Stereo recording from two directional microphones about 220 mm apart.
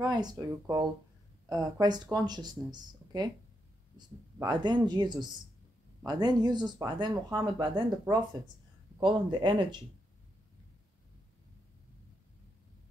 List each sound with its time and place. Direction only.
0.0 s speech: 20° right (ahead or behind)
4.4 s speech: 20° right (ahead or behind)